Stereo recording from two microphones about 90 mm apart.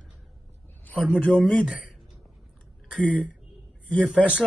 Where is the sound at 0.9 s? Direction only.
20° left (ahead or behind).